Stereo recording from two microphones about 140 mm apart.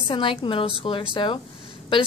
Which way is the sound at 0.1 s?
40° left (ahead or behind).